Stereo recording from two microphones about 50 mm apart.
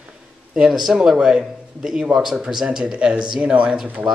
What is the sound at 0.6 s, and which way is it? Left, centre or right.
Speech, centre.